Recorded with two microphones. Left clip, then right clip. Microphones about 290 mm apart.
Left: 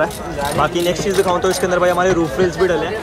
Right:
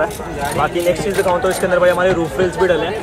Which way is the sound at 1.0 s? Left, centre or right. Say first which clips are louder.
Even; centre.